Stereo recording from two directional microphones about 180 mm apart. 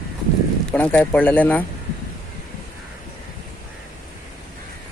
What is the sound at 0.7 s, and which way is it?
Speech, 10° left (ahead or behind).